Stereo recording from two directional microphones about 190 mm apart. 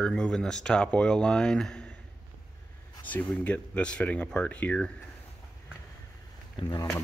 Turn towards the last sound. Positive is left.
turn(degrees=20)  # may be behind; listen again after turning